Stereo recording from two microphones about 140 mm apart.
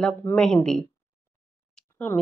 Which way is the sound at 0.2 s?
15° left (ahead or behind).